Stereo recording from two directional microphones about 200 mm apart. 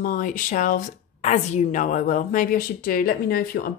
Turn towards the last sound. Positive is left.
turn(degrees=45)  # may be behind; listen again after turning